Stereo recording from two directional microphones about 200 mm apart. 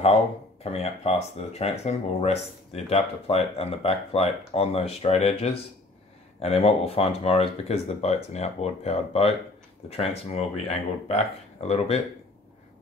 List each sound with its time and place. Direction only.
0.7 s speech: 30° left (ahead or behind)